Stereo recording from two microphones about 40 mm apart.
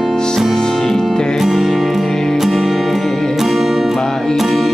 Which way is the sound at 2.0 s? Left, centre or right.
Centre.